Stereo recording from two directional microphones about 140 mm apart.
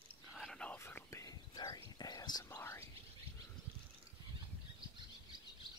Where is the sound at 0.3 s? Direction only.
Centre (ahead or behind).